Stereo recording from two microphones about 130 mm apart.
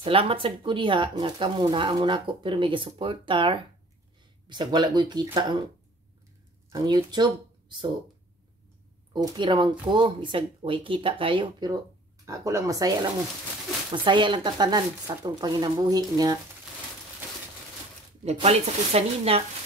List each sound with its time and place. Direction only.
0.0 s speech: 45° right (ahead or behind)
6.7 s speech: 25° right (ahead or behind)
9.1 s speech: 35° right (ahead or behind)
12.3 s speech: 25° right (ahead or behind)
18.2 s speech: 55° right (ahead or behind)